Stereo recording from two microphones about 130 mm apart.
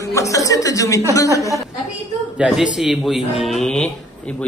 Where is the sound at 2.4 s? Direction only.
Centre (ahead or behind).